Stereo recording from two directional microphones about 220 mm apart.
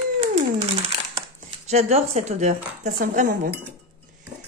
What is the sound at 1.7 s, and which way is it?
A woman's voice, 30° right (ahead or behind).